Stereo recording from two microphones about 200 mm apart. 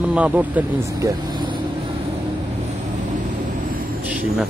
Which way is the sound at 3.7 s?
40° right (ahead or behind).